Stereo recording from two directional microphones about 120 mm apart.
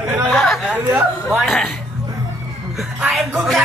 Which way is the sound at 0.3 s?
5° left (ahead or behind).